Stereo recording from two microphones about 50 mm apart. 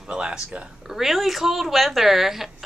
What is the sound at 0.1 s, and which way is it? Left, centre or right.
Speech, centre.